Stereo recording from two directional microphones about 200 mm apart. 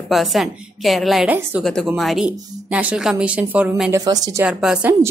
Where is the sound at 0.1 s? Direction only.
Centre (ahead or behind).